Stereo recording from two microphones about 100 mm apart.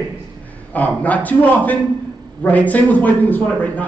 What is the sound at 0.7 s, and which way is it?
A man's voice, 15° left (ahead or behind).